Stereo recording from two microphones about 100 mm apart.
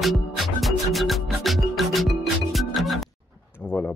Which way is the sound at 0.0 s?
Centre (ahead or behind).